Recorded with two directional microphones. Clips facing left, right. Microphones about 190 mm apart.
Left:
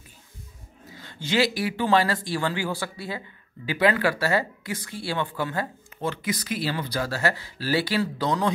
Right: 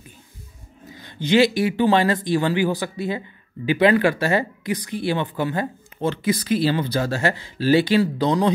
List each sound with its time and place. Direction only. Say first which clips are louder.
0.9 s speech: right 7 dB; 20° right (ahead or behind)